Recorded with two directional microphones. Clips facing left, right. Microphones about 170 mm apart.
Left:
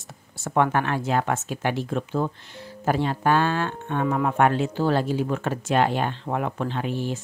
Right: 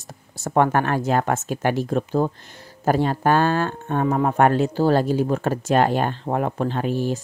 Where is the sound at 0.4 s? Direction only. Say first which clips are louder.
Right 3 dB; 40° right (ahead or behind).